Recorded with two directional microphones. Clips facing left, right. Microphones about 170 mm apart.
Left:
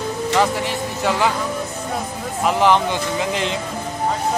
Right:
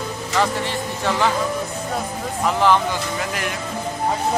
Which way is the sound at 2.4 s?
20° left (ahead or behind).